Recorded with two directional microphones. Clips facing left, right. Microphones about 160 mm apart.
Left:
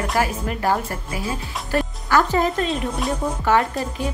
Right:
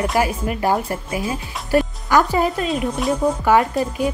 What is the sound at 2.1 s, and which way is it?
A woman's voice, 10° right (ahead or behind).